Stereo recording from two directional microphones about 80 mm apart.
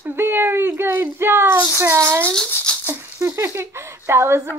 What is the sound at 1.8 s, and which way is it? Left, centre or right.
Speech, right.